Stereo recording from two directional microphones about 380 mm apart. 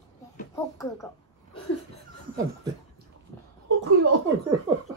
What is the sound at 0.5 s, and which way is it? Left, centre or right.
Speech, centre.